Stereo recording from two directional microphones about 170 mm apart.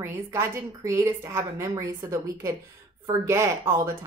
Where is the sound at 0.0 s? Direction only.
15° right (ahead or behind).